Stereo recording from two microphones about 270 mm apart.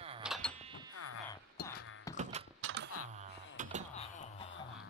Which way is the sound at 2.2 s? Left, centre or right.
Right.